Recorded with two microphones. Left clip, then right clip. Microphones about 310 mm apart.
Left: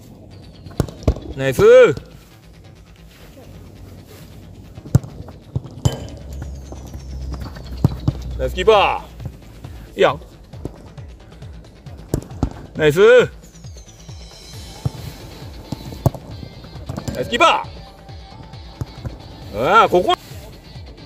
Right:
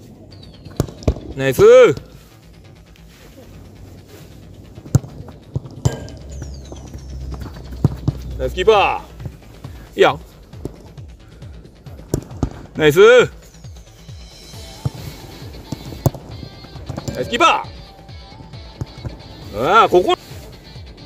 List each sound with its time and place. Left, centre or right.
0.7 s clip-clop: centre
7.4 s clip-clop: centre
8.4 s speech: centre
10.0 s speech: centre
12.1 s clip-clop: centre
12.7 s speech: centre
14.5 s music: centre
16.8 s music: centre
17.2 s speech: centre
18.8 s music: left
19.5 s speech: centre